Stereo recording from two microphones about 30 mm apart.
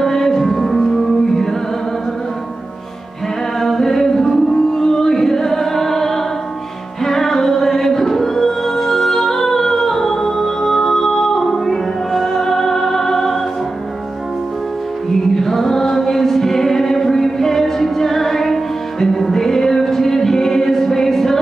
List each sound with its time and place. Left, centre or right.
0.0 s music: centre
3.6 s music: centre
15.3 s music: centre